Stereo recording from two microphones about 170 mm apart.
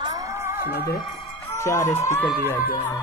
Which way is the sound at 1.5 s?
15° left (ahead or behind).